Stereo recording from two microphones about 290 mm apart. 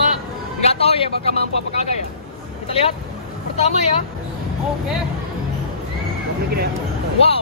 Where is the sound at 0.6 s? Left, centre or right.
Left.